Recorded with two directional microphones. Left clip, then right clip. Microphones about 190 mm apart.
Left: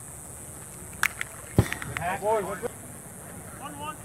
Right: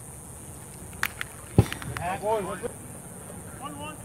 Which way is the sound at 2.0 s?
25° left (ahead or behind).